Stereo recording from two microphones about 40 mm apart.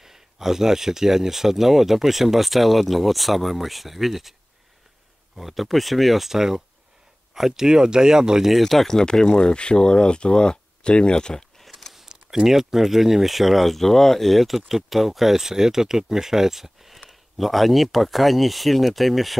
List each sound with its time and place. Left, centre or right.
0.0 s speech: centre
8.5 s speech: centre; by 11.4 s left
11.9 s a sound: centre
12.4 s speech: centre